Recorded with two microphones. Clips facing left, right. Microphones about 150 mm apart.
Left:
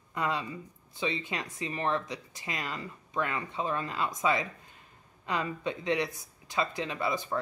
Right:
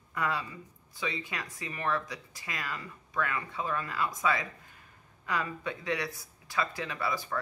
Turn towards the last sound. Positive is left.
turn(degrees=25)  # may be behind; listen again after turning